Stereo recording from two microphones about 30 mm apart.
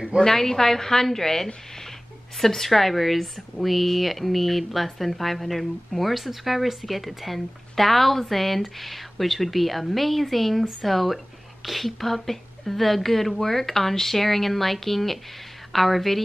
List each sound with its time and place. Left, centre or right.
0.2 s a woman's voice: centre